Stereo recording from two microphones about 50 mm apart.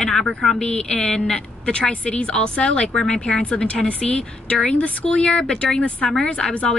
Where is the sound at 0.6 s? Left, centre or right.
Left.